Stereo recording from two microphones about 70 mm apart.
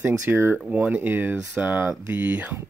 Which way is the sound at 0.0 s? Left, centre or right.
Right.